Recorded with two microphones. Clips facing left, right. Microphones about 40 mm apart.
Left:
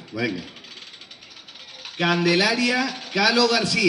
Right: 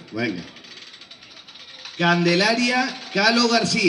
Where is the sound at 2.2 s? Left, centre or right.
Centre.